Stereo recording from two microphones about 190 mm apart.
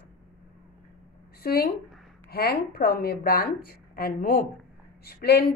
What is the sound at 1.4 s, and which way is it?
A woman's voice, 55° left (ahead or behind).